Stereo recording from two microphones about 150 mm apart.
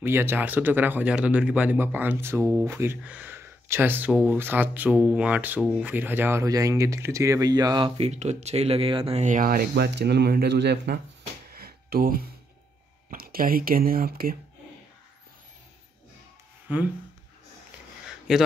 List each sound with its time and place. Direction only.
0.0 s speech: 15° right (ahead or behind)
8.0 s speech: 50° right (ahead or behind); by 11.0 s 90° right
11.5 s a sound: 90° right
13.1 s speech: 75° right (ahead or behind)
18.3 s a man's voice: 5° right (ahead or behind)